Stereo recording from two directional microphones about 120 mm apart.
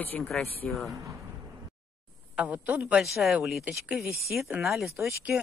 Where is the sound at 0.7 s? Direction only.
Centre (ahead or behind).